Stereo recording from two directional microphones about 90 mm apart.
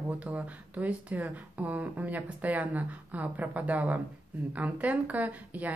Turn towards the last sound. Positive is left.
turn(degrees=-20)  # may be behind; listen again after turning